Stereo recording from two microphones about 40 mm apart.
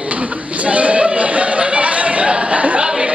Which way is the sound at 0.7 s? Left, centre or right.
Right.